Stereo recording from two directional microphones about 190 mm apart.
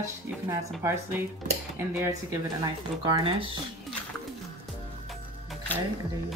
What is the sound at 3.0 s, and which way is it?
Speech, 25° right (ahead or behind).